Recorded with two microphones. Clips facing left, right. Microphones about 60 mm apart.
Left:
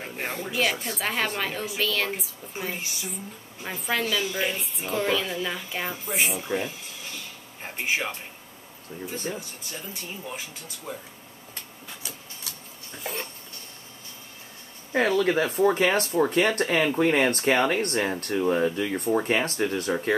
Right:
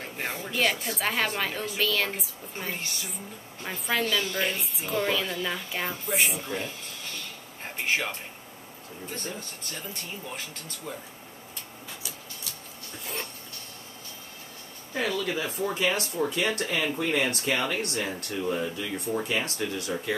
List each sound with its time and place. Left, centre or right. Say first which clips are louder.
0.2 s a woman's voice: left 1 dB; centre
9.0 s speech: left 4 dB; centre
10.9 s speech: left 2 dB; centre
13.0 s a sound: left 3 dB; centre
14.9 s speech: left 7 dB; left